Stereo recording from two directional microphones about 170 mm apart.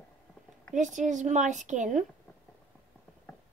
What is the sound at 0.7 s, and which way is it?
Speech, 45° right (ahead or behind).